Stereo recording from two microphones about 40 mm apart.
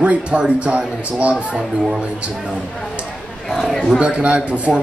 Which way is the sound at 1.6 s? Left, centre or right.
Centre.